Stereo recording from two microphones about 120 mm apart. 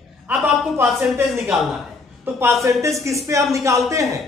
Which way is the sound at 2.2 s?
25° right (ahead or behind).